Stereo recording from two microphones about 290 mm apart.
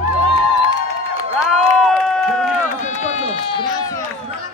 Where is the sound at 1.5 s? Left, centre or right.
Centre.